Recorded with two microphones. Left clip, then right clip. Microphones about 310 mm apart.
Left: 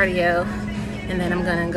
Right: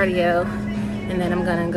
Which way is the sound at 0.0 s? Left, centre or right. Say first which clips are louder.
Even; centre.